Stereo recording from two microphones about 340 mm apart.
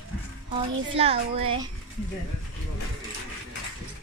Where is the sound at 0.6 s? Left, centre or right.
Centre.